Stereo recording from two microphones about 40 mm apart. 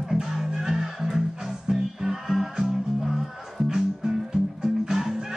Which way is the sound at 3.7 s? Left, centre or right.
Centre.